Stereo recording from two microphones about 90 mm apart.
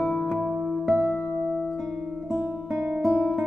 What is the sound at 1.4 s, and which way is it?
Music, centre (ahead or behind).